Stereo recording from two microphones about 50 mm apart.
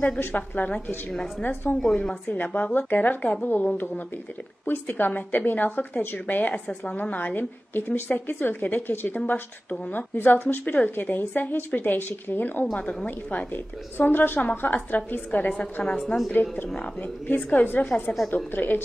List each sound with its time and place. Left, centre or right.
0.2 s a woman's voice: left
0.7 s a woman's voice: centre
1.4 s a woman's voice: left
2.0 s a woman's voice: left
2.3 s a woman's voice: left
13.9 s a woman's voice: left
16.3 s a woman's voice: left
18.3 s a woman's voice: left